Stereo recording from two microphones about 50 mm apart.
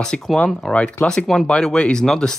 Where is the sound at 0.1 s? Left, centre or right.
Centre.